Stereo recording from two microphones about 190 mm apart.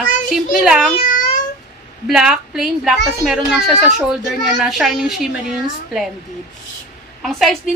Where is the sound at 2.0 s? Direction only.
Centre (ahead or behind).